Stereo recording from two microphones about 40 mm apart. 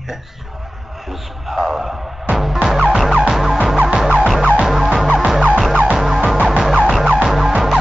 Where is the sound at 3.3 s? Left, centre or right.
Centre.